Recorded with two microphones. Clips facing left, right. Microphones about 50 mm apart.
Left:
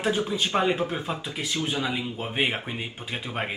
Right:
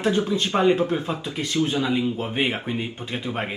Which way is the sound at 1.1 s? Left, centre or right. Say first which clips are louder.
Right 3 dB; centre.